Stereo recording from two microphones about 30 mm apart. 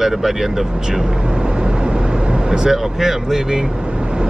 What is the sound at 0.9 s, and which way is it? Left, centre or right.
Vehicle, right.